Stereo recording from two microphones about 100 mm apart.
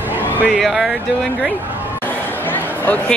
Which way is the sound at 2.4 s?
20° left (ahead or behind).